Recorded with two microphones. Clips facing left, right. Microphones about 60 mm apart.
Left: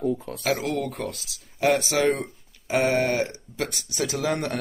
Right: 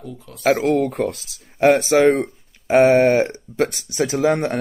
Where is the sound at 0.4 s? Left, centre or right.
Right.